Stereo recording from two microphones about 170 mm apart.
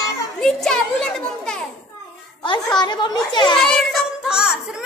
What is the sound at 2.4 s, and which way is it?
A child's voice, 25° left (ahead or behind).